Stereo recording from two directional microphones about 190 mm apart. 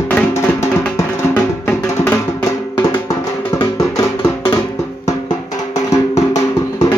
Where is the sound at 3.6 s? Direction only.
15° left (ahead or behind).